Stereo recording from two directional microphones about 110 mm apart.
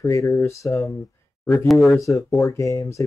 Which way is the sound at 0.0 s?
25° left (ahead or behind).